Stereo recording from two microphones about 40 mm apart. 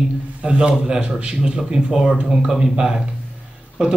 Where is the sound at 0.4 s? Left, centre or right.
Right.